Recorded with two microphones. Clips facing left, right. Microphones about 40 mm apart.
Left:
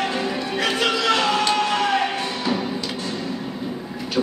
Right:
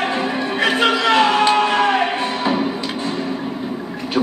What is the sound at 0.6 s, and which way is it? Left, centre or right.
Music, right.